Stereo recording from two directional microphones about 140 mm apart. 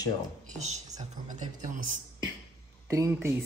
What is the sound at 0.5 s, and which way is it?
Speech, 55° right (ahead or behind).